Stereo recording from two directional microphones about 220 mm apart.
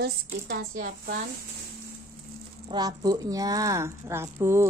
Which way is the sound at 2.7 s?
15° right (ahead or behind).